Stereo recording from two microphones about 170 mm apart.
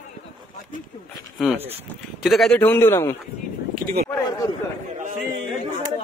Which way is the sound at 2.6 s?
15° left (ahead or behind).